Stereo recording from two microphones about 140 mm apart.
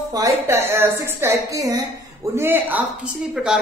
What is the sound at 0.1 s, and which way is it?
A woman's voice, 20° right (ahead or behind).